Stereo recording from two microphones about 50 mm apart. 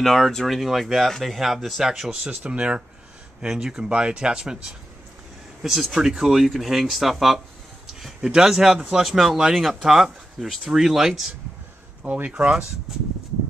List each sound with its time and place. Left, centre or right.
0.0 s speech: centre
2.2 s speech: right
3.3 s speech: centre
12.0 s speech: right